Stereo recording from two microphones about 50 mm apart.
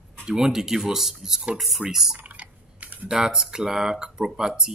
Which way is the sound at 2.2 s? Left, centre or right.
Right.